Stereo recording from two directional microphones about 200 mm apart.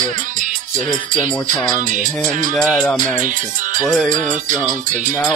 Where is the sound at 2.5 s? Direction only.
5° left (ahead or behind).